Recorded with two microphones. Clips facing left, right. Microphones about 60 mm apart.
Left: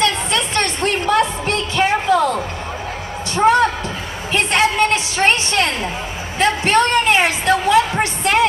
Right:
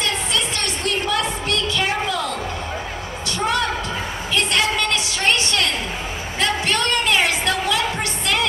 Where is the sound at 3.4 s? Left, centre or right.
Left.